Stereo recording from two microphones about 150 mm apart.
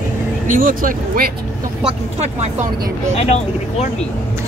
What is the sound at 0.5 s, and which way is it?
Speech, 65° right (ahead or behind).